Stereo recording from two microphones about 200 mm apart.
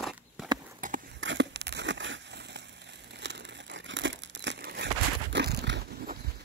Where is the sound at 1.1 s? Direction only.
65° right (ahead or behind).